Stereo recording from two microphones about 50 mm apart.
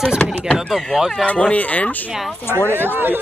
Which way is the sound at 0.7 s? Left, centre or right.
Centre.